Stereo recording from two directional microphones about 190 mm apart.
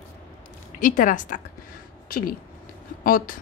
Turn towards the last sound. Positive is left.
turn(degrees=50)  # may be behind; listen again after turning